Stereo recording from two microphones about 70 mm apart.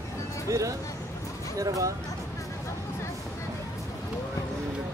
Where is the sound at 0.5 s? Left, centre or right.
Right.